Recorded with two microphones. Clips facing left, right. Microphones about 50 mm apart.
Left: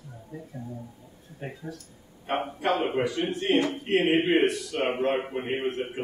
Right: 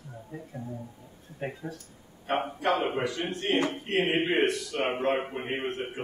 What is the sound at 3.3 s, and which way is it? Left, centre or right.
Speech, left.